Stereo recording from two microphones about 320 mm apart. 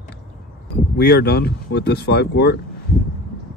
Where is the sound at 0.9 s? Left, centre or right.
Left.